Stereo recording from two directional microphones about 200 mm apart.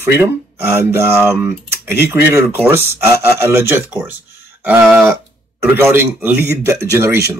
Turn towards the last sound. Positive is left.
turn(degrees=-10)  # may be behind; listen again after turning